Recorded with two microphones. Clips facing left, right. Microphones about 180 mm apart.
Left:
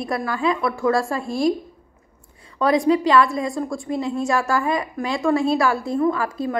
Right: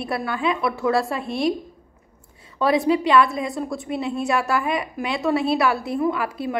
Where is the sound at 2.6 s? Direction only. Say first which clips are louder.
Left 2 dB; 25° right (ahead or behind).